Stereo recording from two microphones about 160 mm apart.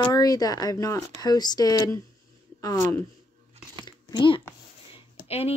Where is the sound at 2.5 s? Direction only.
20° left (ahead or behind).